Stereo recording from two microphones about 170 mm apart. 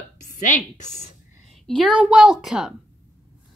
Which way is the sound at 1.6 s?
Centre (ahead or behind).